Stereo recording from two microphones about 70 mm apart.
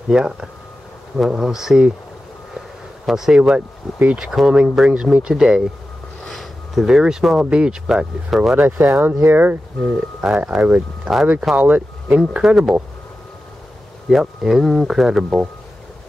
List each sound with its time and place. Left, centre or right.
0.1 s speech: centre
3.1 s speech: centre
6.2 s a sound: centre
7.4 s speech: centre
8.5 s speech: right
10.2 s speech: centre
12.2 s speech: centre
14.0 s speech: centre